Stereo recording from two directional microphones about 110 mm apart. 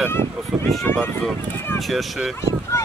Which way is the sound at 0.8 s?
20° left (ahead or behind).